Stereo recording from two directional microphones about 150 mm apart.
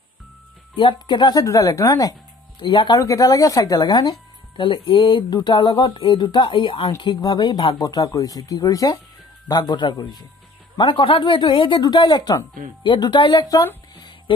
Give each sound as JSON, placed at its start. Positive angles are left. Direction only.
{"t": 0.7, "sound": "speech", "side_deg": 30}